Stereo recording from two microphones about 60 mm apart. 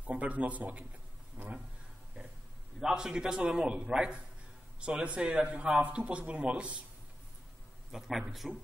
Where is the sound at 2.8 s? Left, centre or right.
Centre.